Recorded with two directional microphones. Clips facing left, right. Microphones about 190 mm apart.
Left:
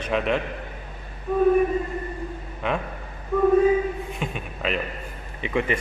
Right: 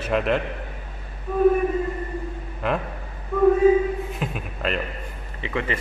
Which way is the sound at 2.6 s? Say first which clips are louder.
Right 1 dB; centre (ahead or behind).